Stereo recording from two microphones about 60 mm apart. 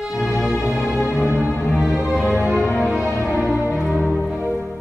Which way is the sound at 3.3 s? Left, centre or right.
Right.